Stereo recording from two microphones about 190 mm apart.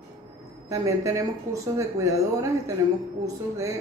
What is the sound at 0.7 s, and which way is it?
Speech, 15° right (ahead or behind).